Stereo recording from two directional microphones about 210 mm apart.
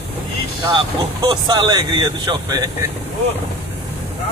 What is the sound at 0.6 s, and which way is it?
Speech, 20° right (ahead or behind).